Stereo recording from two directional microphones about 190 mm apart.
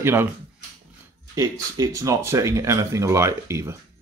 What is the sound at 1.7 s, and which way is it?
Speech, 15° right (ahead or behind).